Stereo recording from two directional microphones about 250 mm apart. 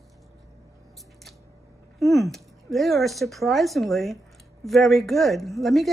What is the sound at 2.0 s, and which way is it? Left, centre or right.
A woman's voice, centre.